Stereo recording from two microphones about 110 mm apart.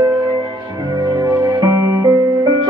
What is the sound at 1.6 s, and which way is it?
Music, 35° right (ahead or behind).